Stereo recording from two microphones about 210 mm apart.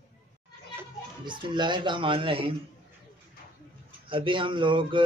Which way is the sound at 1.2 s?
20° right (ahead or behind).